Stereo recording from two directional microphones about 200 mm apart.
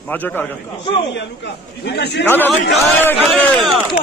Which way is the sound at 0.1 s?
10° left (ahead or behind).